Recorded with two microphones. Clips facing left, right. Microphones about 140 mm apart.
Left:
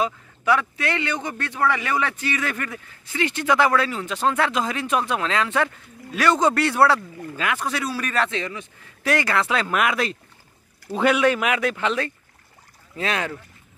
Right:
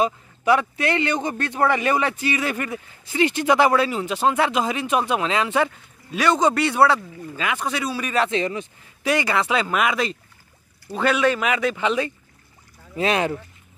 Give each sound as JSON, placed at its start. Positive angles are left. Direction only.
{"t": 0.0, "sound": "a man's voice", "side_deg": -20}
{"t": 6.1, "sound": "speech", "side_deg": 0}
{"t": 8.3, "sound": "a man's voice", "side_deg": -25}
{"t": 9.0, "sound": "speech", "side_deg": 0}
{"t": 12.9, "sound": "a man's voice", "side_deg": -20}